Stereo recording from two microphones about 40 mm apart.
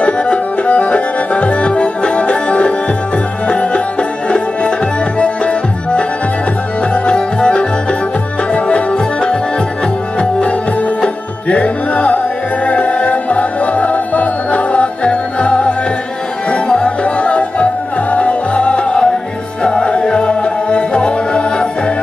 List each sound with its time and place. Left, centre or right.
0.0 s accordion: left
3.4 s music: left
5.2 s music: left